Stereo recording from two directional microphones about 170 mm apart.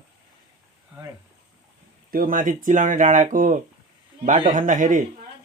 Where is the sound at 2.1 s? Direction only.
55° right (ahead or behind).